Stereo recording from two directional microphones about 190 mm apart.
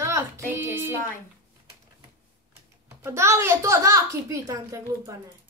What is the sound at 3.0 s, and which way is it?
Speech, 15° right (ahead or behind).